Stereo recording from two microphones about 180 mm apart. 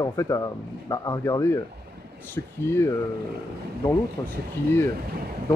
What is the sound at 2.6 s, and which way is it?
Speech, 15° left (ahead or behind).